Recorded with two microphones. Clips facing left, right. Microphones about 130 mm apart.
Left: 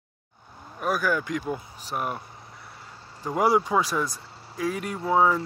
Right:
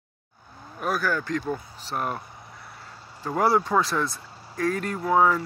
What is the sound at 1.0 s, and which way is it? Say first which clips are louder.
Speech: even; 15° left (ahead or behind).